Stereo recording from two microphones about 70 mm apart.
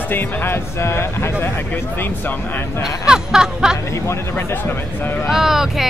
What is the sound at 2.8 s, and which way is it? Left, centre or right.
Music, centre.